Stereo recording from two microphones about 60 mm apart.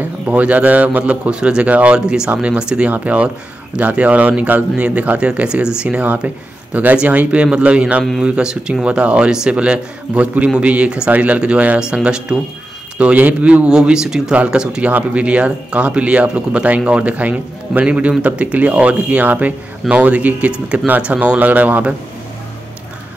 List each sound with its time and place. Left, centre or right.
0.3 s speech: right